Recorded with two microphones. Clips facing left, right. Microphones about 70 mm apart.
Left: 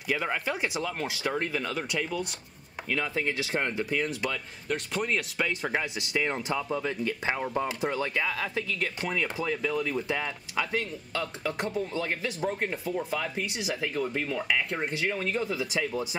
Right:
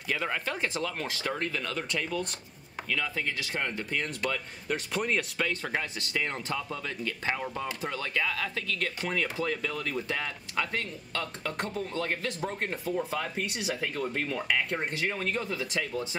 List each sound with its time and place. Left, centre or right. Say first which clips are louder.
0.1 s speech: left 2 dB; centre
2.9 s speech: left 3 dB; left
3.9 s speech: left 2 dB; centre
5.5 s speech: left 2 dB; centre